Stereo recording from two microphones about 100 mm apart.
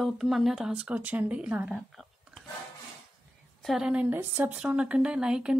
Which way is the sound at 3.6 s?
5° right (ahead or behind).